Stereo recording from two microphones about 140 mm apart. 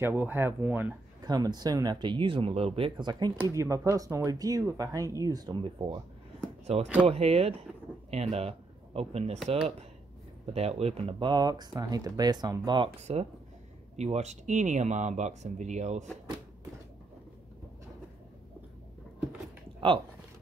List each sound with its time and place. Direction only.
0.0 s speech: 15° right (ahead or behind)
1.2 s speech: 30° right (ahead or behind)
6.6 s speech: 50° right (ahead or behind)
13.0 s speech: 50° right (ahead or behind)